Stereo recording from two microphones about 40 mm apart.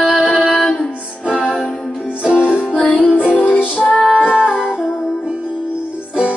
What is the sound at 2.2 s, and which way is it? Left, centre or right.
Music, right.